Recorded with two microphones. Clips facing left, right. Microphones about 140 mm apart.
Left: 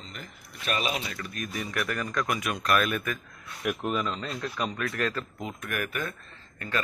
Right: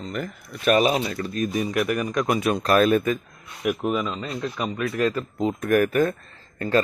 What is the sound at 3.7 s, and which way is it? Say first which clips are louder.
Speech: right 5 dB; 5° right (ahead or behind).